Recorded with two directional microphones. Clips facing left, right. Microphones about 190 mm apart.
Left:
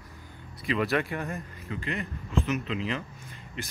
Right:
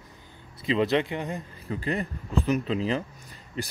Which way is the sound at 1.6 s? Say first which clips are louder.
Right 7 dB; 35° right (ahead or behind).